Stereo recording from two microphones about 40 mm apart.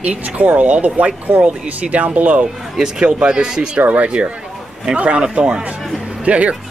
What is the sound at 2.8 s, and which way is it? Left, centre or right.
Speech, right.